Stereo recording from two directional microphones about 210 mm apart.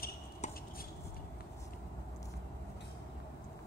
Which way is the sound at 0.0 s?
45° left (ahead or behind).